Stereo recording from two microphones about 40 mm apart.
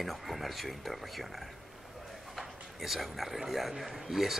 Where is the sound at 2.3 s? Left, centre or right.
Centre.